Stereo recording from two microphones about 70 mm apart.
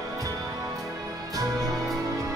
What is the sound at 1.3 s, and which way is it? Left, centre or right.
Music, right.